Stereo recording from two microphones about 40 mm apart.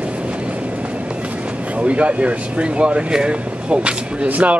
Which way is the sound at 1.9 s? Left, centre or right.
Right.